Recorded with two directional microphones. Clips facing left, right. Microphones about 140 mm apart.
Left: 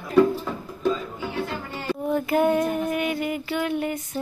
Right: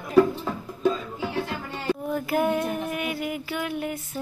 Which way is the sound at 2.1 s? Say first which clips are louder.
Left 5 dB; 5° right (ahead or behind).